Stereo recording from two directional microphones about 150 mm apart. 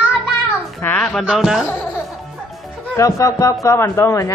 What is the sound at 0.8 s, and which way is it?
Speech, 10° left (ahead or behind).